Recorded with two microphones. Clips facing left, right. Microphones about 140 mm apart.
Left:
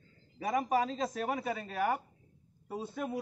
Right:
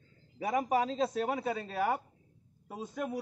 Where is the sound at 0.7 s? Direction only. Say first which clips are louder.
Right 1 dB; 25° right (ahead or behind).